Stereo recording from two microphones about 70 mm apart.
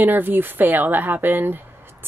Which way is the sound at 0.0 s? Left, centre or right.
Right.